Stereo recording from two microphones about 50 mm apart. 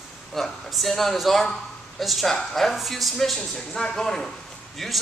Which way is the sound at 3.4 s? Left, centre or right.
Centre.